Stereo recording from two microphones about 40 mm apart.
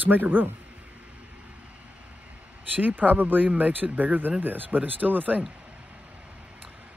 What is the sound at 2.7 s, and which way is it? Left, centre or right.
Speech, right.